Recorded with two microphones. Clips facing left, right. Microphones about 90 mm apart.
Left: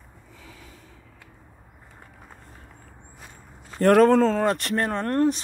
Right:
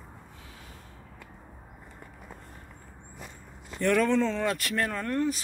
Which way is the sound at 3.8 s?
55° left (ahead or behind).